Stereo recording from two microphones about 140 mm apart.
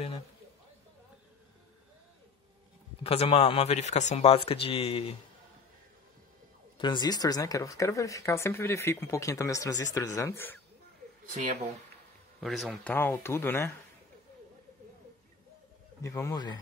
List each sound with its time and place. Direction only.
3.0 s speech: 45° left (ahead or behind)
6.8 s speech: 30° left (ahead or behind); by 10.6 s 15° left (ahead or behind)
12.4 s a man's voice: centre (ahead or behind)
12.8 s speech: 15° left (ahead or behind)
16.0 s speech: 20° left (ahead or behind)